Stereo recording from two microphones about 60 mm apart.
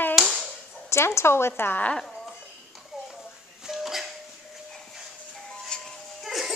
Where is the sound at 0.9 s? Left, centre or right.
Left.